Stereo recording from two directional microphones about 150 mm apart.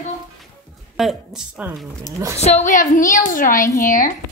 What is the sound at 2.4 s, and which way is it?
A woman's voice, 50° left (ahead or behind).